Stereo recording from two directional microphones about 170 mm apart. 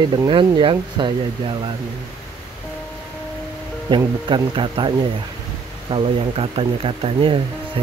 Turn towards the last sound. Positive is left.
turn(degrees=-35)  # may be behind; listen again after turning